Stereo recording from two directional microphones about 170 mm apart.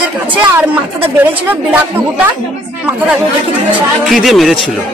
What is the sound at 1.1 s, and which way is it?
Speech, 10° right (ahead or behind).